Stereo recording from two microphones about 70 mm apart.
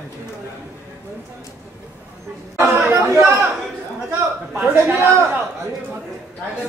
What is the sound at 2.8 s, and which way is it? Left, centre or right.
Speech, right.